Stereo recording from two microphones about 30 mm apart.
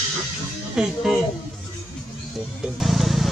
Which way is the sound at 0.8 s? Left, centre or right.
Right.